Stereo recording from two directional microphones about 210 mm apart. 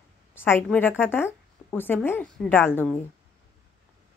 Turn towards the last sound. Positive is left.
turn(degrees=10)  # may be behind; listen again after turning